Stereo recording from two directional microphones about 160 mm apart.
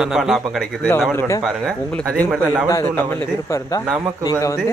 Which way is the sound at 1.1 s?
15° left (ahead or behind).